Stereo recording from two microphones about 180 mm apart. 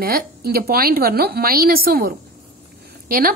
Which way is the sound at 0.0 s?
55° right (ahead or behind).